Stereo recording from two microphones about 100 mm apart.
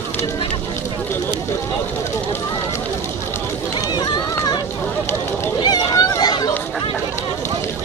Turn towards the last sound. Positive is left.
turn(degrees=45)  # may be behind; listen again after turning